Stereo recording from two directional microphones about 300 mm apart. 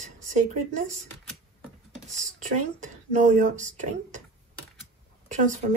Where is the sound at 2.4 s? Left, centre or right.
Right.